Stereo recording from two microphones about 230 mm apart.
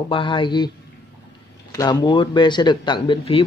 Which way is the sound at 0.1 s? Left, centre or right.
Left.